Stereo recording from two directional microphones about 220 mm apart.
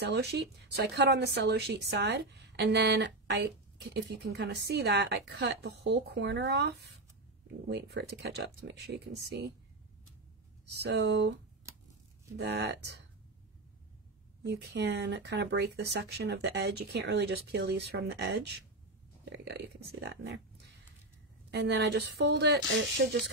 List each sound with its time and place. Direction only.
0.0 s speech: 50° right (ahead or behind)
10.8 s speech: 50° right (ahead or behind)
12.4 s speech: 50° right (ahead or behind)
14.4 s speech: 50° right (ahead or behind)
21.5 s speech: 50° right (ahead or behind)